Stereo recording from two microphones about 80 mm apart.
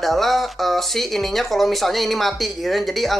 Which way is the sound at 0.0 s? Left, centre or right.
Centre.